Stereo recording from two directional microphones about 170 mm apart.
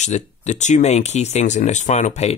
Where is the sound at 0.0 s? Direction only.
45° left (ahead or behind).